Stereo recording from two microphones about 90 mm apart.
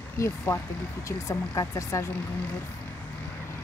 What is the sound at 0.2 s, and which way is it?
Speech, 40° left (ahead or behind).